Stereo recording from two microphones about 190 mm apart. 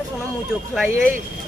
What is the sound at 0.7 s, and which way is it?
Speech, 10° right (ahead or behind).